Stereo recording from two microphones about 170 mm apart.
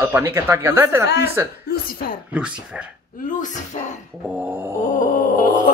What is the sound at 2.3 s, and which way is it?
Speech, 5° right (ahead or behind).